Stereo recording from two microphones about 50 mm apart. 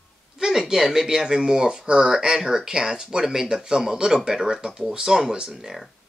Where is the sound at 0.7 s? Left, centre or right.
Centre.